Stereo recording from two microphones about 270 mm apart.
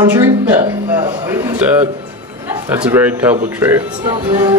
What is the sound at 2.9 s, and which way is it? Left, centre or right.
A man's voice, centre.